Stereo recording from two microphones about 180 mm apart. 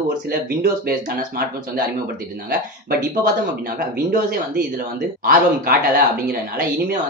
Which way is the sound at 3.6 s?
50° right (ahead or behind).